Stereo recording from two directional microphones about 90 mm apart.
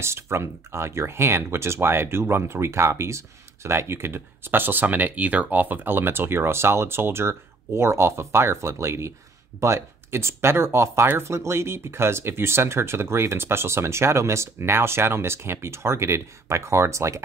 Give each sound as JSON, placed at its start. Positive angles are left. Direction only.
{"t": 0.0, "sound": "speech", "side_deg": -30}